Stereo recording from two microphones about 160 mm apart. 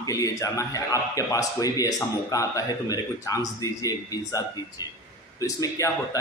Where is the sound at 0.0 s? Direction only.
20° left (ahead or behind).